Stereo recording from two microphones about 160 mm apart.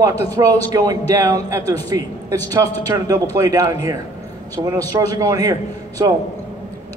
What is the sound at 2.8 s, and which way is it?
Speech, 25° right (ahead or behind).